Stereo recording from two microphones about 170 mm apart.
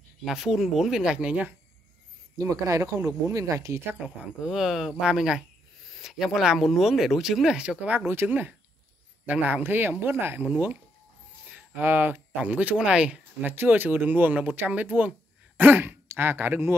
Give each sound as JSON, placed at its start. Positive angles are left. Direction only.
{"t": 0.2, "sound": "speech", "side_deg": 0}
{"t": 2.3, "sound": "speech", "side_deg": -20}
{"t": 4.4, "sound": "speech", "side_deg": -5}